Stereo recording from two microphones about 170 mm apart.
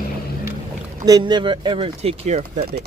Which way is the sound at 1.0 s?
25° right (ahead or behind).